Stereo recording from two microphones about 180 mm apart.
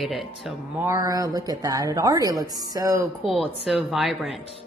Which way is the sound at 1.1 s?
20° right (ahead or behind).